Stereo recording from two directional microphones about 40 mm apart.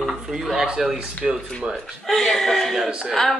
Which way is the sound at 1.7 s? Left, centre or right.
Centre.